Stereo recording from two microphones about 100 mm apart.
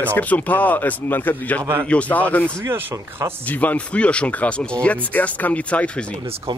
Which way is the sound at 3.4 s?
15° left (ahead or behind).